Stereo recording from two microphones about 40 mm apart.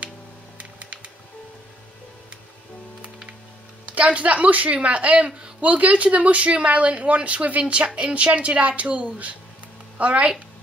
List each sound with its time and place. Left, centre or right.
4.0 s a woman's voice: right